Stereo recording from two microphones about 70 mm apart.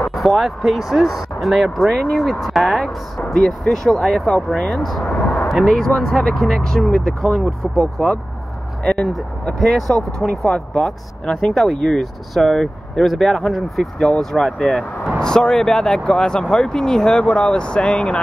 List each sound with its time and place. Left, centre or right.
0.1 s speech: centre
5.0 s a sound: centre
5.5 s speech: centre
8.8 s speech: centre